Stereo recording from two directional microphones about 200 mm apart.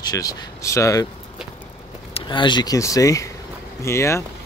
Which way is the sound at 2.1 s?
25° left (ahead or behind).